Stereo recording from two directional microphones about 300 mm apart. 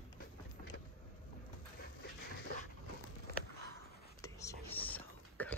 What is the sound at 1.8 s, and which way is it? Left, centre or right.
Dog, left.